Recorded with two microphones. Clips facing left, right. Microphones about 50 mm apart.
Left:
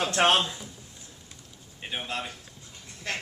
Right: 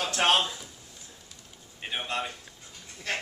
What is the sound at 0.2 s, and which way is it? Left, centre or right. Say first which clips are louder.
Speech: left 2 dB; left.